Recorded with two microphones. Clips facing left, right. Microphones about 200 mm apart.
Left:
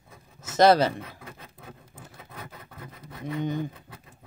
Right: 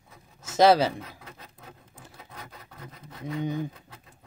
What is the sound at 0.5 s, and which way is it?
Speech, 10° right (ahead or behind).